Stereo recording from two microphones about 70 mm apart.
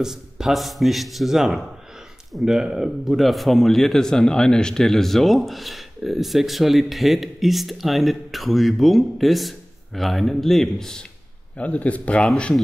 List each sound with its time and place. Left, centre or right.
0.0 s a man's voice: centre
11.5 s speech: centre